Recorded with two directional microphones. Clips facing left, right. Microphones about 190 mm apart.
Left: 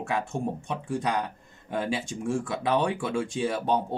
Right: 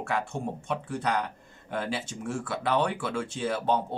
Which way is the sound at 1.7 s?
15° left (ahead or behind).